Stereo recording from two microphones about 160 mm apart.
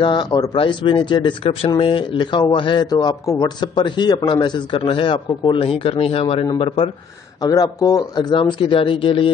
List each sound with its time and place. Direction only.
0.0 s speech: 30° left (ahead or behind)